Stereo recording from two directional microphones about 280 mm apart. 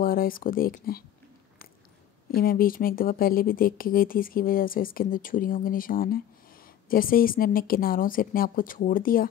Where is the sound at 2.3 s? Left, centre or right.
Left.